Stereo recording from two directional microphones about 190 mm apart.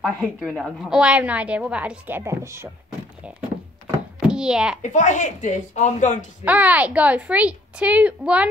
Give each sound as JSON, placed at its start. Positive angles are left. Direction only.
{"t": 0.0, "sound": "a woman's voice", "side_deg": 0}
{"t": 4.3, "sound": "a child's voice", "side_deg": -5}
{"t": 4.8, "sound": "speech", "side_deg": 40}
{"t": 6.4, "sound": "a woman's voice", "side_deg": -10}